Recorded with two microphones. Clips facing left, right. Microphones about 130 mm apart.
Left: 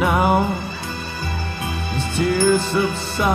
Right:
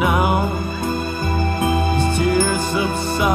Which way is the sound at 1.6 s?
45° right (ahead or behind).